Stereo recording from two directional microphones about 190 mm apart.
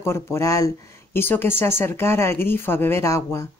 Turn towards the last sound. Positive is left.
turn(degrees=15)  # may be behind; listen again after turning